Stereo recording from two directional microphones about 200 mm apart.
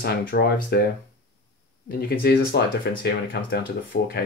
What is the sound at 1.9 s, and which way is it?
Speech, 50° left (ahead or behind).